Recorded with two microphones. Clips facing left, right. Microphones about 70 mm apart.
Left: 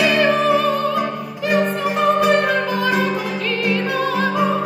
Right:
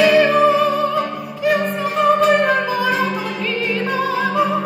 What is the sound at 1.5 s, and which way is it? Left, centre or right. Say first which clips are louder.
Opera: left 2 dB; centre.